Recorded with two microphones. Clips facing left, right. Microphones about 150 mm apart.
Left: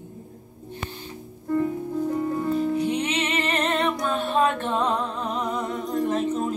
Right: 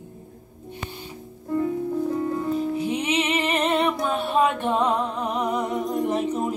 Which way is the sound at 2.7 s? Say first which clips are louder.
Even; 5° right (ahead or behind).